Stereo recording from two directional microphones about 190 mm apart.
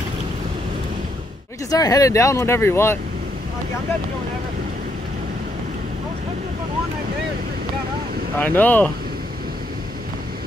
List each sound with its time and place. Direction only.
1.7 s speech: 20° left (ahead or behind)
8.4 s speech: 10° left (ahead or behind)